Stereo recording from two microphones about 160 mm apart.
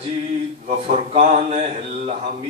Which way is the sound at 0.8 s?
45° right (ahead or behind).